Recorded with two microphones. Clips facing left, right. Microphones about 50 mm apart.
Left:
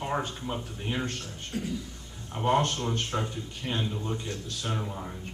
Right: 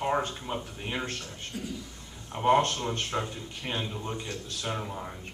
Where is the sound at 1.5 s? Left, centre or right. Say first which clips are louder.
Left 4 dB; left.